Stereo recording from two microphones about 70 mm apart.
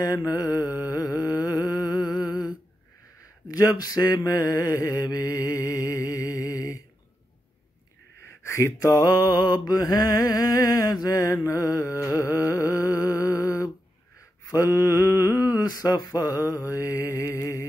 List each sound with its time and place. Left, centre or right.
0.8 s music: left
3.4 s mantra: left
8.4 s mantra: left
16.5 s mantra: left